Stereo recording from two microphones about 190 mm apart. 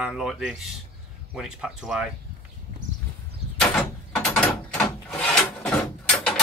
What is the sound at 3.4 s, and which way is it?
Door, 30° right (ahead or behind).